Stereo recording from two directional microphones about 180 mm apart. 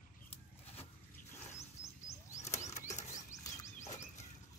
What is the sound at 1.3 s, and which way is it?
Wild animals, 15° left (ahead or behind).